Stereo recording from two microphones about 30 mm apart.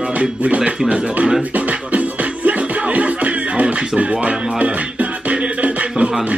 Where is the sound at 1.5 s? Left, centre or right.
Right.